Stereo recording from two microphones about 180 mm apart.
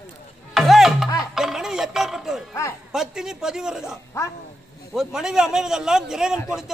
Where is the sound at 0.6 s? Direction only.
Centre (ahead or behind).